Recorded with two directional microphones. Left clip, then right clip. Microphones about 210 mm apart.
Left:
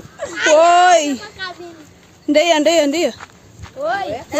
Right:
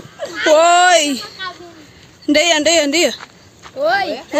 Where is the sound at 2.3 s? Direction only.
Centre (ahead or behind).